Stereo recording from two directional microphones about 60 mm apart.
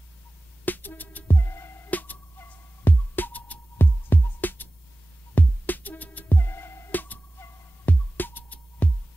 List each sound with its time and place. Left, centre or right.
0.7 s music: left
1.9 s music: left
6.9 s music: left